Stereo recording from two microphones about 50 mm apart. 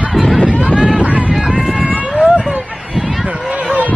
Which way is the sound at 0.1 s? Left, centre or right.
Centre.